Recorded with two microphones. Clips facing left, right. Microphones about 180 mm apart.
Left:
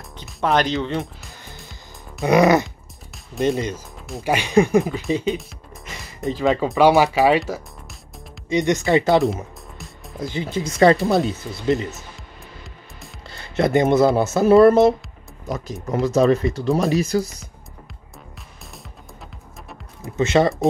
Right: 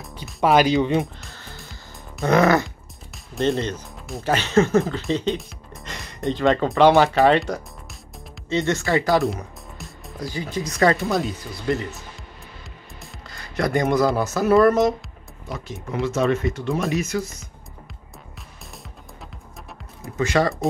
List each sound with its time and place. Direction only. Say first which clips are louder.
0.4 s speech: right 3 dB; 10° right (ahead or behind)
2.2 s speech: left 2 dB; 15° left (ahead or behind)
8.5 s speech: left 3 dB; 15° left (ahead or behind)
13.3 s speech: left 4 dB; 25° left (ahead or behind)
15.4 s speech: left 5 dB; 40° left (ahead or behind)
20.2 s speech: left 3 dB; 25° left (ahead or behind)